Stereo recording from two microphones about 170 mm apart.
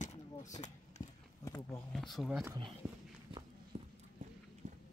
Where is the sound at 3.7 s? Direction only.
35° right (ahead or behind).